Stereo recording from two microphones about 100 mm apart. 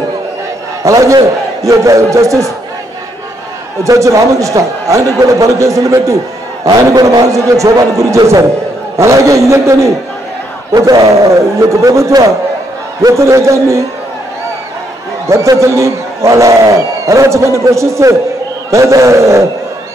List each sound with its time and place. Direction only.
0.8 s a man's voice: 35° right (ahead or behind)
3.8 s a man's voice: 30° right (ahead or behind)
15.2 s a man's voice: 30° right (ahead or behind)